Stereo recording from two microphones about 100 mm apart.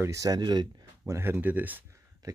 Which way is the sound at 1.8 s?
30° right (ahead or behind).